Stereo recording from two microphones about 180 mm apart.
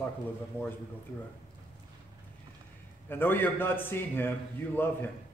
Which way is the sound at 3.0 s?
10° left (ahead or behind).